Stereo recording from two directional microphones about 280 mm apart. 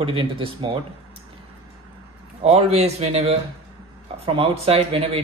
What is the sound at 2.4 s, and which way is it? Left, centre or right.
Speech, right.